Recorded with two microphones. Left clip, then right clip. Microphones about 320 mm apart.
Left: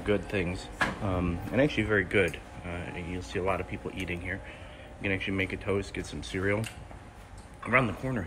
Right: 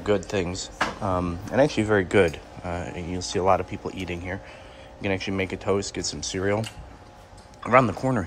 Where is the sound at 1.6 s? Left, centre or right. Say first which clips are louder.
Right 6 dB; right.